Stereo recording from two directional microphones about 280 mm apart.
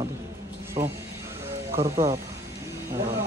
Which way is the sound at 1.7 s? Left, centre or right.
Right.